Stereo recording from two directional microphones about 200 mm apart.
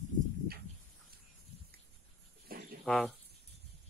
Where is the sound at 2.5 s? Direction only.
45° right (ahead or behind).